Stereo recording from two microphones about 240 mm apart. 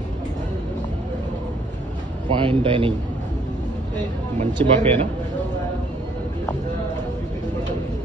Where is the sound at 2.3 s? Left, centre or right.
Right.